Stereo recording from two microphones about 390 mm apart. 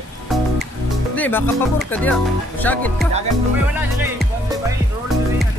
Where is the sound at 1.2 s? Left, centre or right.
Centre.